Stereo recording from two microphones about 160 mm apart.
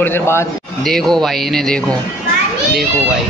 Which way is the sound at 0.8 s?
Centre (ahead or behind).